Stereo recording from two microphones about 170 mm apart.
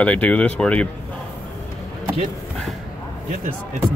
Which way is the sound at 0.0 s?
10° left (ahead or behind).